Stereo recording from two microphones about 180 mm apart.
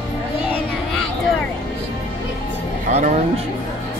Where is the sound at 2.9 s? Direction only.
40° right (ahead or behind).